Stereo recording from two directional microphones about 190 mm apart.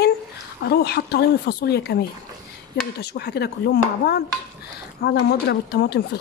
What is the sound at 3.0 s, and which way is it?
Speech, 60° left (ahead or behind).